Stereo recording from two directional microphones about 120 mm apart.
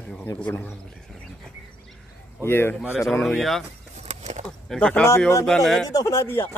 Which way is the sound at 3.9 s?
70° right (ahead or behind).